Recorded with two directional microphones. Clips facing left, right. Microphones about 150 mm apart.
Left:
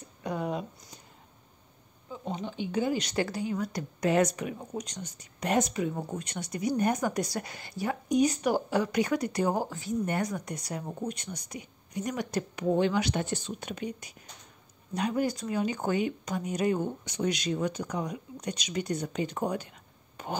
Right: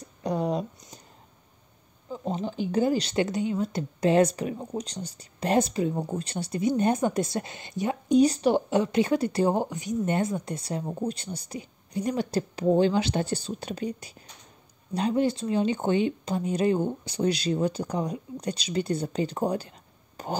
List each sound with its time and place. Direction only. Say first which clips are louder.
0.2 s speech: right 5 dB; 35° right (ahead or behind)
2.2 s speech: right 5 dB; 35° right (ahead or behind)
20.2 s whispering: right 3 dB; 35° right (ahead or behind)